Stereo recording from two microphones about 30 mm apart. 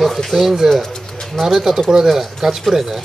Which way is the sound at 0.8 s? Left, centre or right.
Centre.